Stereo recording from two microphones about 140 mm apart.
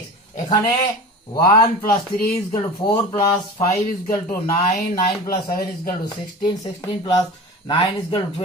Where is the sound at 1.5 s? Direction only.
90° left.